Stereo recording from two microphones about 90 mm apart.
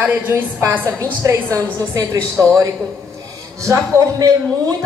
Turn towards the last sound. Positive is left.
turn(degrees=-40)  # may be behind; listen again after turning